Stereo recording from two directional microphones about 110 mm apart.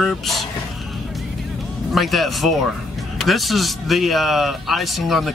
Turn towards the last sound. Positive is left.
turn(degrees=0)  # may be behind; listen again after turning